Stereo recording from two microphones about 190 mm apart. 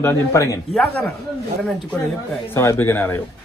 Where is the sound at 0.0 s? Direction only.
15° left (ahead or behind).